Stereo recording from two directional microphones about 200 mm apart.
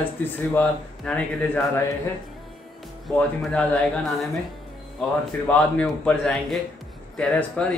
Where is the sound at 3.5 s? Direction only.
5° left (ahead or behind).